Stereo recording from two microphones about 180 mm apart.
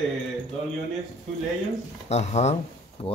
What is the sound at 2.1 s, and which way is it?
Speech, 40° left (ahead or behind).